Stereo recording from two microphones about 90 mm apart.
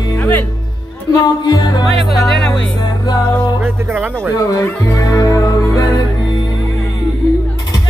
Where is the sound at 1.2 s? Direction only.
50° left (ahead or behind).